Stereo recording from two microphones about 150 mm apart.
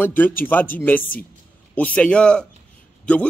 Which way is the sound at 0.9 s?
70° left (ahead or behind).